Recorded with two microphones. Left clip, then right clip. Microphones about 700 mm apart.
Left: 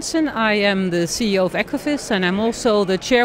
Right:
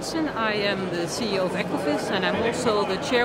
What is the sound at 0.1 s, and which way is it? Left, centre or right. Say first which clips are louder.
Speech: left 7 dB; left.